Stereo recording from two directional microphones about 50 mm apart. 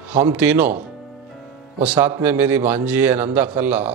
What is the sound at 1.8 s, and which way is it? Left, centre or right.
A man's voice, right.